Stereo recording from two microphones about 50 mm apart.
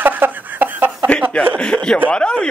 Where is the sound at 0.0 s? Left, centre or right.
Right.